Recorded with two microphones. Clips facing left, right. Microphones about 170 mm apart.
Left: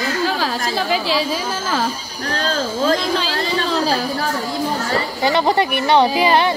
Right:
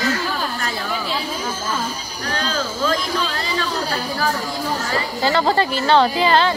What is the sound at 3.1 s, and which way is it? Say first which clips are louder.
Speech: left 3 dB; 90° left.